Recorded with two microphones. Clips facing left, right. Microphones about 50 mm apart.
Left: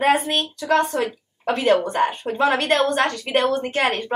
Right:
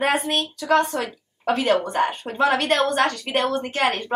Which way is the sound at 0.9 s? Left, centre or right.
Centre.